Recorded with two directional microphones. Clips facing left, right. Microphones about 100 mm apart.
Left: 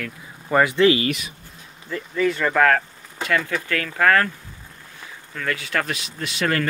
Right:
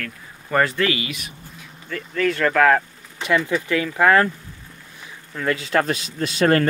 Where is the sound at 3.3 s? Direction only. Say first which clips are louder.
Right 3 dB; 20° right (ahead or behind).